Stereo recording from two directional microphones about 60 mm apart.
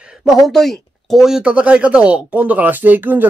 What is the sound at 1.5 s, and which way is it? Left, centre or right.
Speech, centre.